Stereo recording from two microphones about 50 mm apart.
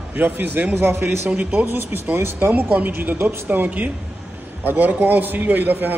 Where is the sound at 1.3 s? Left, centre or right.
Right.